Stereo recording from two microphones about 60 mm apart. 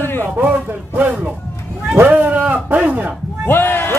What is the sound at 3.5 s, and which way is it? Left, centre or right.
Speech, left.